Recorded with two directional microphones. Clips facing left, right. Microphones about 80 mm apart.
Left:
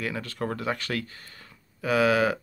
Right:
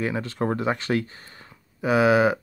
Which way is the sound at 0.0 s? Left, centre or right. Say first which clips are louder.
Right 5 dB; right.